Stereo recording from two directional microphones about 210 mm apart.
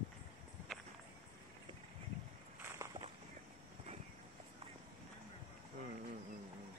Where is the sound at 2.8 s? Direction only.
10° right (ahead or behind).